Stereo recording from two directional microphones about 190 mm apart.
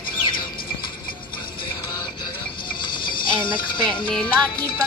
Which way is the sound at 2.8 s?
25° left (ahead or behind).